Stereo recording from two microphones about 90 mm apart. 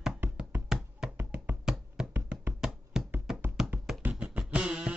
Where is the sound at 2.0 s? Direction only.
10° right (ahead or behind).